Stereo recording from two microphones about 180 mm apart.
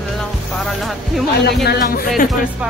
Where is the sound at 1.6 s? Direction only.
55° left (ahead or behind).